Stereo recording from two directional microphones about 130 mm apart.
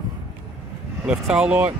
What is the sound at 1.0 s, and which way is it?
Speech, 5° right (ahead or behind).